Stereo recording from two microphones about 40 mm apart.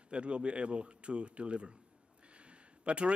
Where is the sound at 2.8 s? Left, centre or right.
Right.